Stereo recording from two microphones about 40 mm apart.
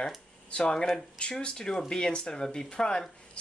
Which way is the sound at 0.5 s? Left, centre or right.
Left.